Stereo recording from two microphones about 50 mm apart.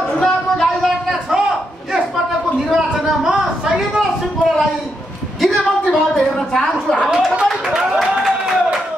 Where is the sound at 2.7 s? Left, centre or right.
Centre.